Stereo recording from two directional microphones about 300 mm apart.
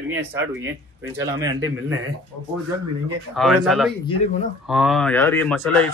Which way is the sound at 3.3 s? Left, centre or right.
Centre.